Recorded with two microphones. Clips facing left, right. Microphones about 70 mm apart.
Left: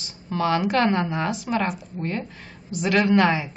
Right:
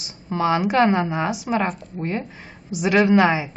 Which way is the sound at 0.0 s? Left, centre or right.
Centre.